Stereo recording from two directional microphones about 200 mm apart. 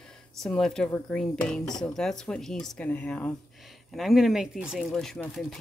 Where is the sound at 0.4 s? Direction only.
Centre (ahead or behind).